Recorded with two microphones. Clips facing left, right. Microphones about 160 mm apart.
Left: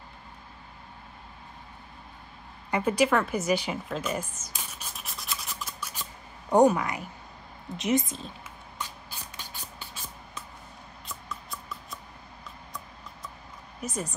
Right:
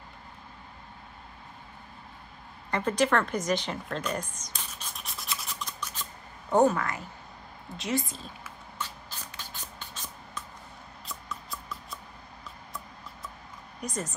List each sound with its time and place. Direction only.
2.7 s a sound: 10° left (ahead or behind)
6.5 s a woman's voice: 15° left (ahead or behind)
8.7 s vehicle: 15° left (ahead or behind)
11.1 s music: centre (ahead or behind)
13.7 s speech: 5° left (ahead or behind)